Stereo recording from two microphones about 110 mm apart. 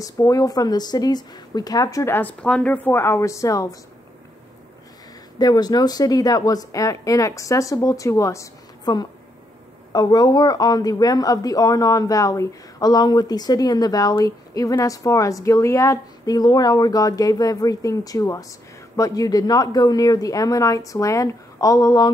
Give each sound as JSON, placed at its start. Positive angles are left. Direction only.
{"t": 0.0, "sound": "a woman's voice", "side_deg": 30}
{"t": 2.1, "sound": "speech", "side_deg": 10}
{"t": 5.4, "sound": "a woman's voice", "side_deg": 35}